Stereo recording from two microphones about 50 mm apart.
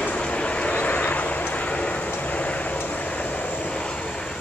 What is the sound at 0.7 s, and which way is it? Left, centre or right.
Vehicle, left.